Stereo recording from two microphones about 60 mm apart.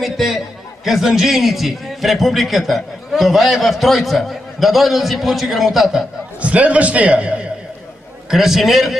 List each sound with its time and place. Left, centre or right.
0.0 s a man's voice: centre
6.4 s a man's voice: right
8.3 s a man's voice: centre